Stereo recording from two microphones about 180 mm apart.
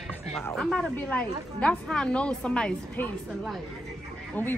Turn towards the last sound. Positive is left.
turn(degrees=10)  # may be behind; listen again after turning